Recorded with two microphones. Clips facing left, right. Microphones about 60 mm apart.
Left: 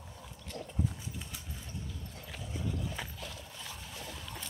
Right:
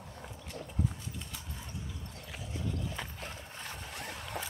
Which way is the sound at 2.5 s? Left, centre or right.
Centre.